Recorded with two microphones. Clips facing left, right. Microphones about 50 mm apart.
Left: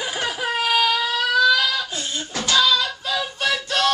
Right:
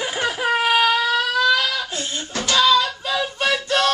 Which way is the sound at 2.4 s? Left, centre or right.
Centre.